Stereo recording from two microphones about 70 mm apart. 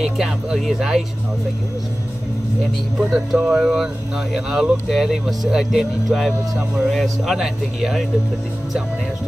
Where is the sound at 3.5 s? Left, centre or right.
Centre.